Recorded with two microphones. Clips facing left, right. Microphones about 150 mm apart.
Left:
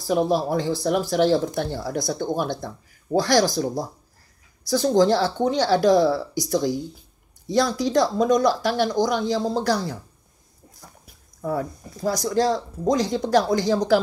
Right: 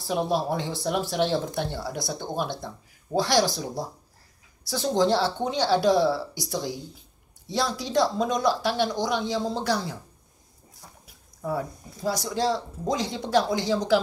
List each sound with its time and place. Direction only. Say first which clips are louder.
0.0 s speech: left 5 dB; 40° left (ahead or behind)
11.4 s speech: left 3 dB; 45° left (ahead or behind)